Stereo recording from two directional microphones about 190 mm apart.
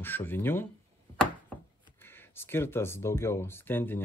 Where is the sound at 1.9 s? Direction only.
10° left (ahead or behind).